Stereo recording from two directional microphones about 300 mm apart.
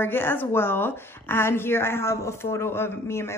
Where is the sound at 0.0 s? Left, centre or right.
Centre.